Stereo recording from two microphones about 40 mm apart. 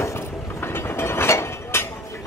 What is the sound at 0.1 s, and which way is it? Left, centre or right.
Vehicle, left.